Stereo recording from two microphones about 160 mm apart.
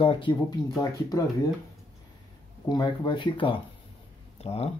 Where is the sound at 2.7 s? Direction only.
25° left (ahead or behind).